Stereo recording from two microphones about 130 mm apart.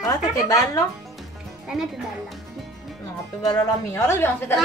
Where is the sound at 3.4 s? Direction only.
25° left (ahead or behind).